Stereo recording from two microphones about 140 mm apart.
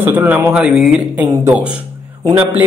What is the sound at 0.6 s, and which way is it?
Speech, 5° right (ahead or behind).